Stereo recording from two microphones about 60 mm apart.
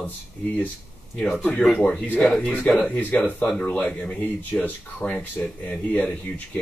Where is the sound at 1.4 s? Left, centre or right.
Left.